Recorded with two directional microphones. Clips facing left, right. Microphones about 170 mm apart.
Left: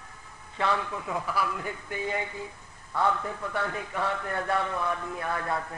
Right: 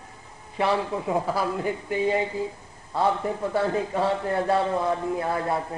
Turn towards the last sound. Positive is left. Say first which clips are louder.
# right 5 dB
turn(degrees=-25)  # may be behind; listen again after turning